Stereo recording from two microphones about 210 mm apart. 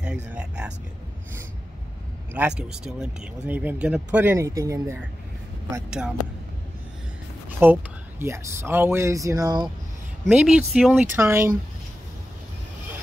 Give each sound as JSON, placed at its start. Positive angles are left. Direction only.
{"t": 0.0, "sound": "speech", "side_deg": -5}
{"t": 2.3, "sound": "speech", "side_deg": -5}
{"t": 5.9, "sound": "speech", "side_deg": -5}
{"t": 7.4, "sound": "speech", "side_deg": -10}
{"t": 10.2, "sound": "speech", "side_deg": -5}